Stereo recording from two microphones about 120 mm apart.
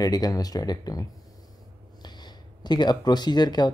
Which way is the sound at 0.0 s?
30° left (ahead or behind).